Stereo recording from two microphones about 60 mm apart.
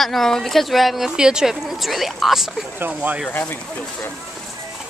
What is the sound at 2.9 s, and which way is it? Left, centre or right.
Speech, right.